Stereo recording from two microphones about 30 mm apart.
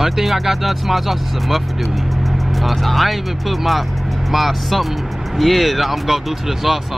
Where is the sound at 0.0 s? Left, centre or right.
Centre.